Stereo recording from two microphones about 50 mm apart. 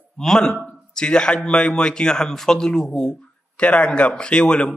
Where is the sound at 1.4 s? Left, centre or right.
Centre.